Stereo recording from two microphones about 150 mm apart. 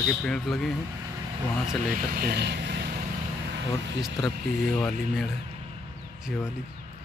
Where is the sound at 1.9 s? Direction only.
75° right (ahead or behind); by 3.0 s 90° right.